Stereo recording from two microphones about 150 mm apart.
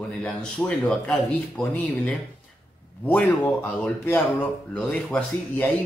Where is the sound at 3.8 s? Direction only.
15° left (ahead or behind).